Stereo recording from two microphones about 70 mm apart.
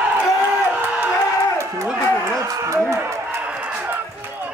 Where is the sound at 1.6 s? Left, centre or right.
Right.